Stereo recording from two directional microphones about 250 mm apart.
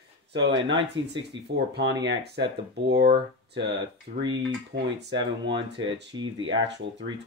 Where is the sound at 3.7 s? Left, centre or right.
Centre.